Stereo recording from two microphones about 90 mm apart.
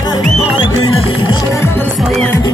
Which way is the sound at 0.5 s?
85° left.